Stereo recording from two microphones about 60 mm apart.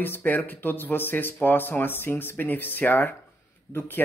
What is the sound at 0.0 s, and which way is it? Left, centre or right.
Speech, left.